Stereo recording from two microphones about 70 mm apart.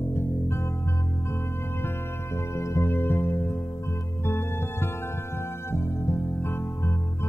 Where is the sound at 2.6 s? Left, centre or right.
Left.